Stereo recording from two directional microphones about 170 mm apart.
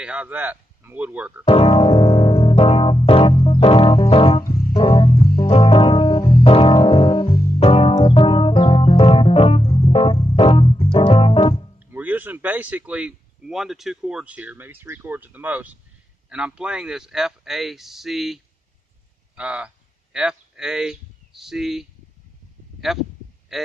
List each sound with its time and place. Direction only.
0.0 s speech: 5° right (ahead or behind)
1.5 s keyboard: 35° left (ahead or behind)
4.7 s music: 35° left (ahead or behind)
11.8 s speech: 10° right (ahead or behind)
23.5 s speech: centre (ahead or behind)